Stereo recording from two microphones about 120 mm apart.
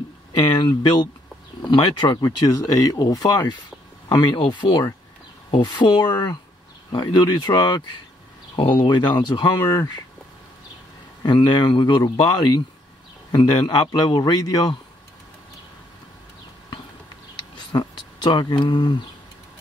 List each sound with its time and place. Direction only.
0.4 s speech: 40° left (ahead or behind)
11.2 s speech: 40° left (ahead or behind)
17.6 s speech: 40° left (ahead or behind)